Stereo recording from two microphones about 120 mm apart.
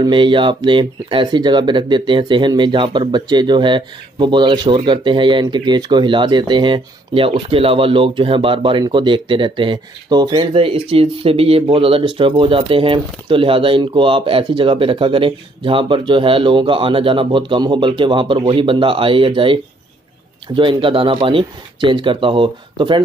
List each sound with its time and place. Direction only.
0.0 s speech: 45° right (ahead or behind)